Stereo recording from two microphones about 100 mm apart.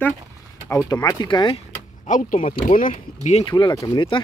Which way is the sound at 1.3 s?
50° left (ahead or behind).